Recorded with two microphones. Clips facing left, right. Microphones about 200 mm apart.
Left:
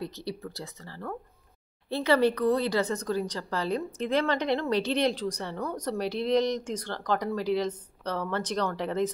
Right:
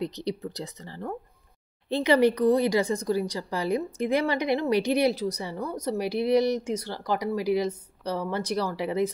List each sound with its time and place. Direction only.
0.0 s speech: 20° right (ahead or behind)